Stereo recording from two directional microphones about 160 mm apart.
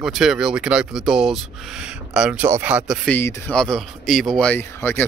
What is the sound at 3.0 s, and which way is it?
Speech, 10° left (ahead or behind).